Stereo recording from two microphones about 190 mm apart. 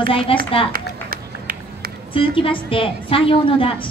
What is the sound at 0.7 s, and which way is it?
Run, 50° right (ahead or behind).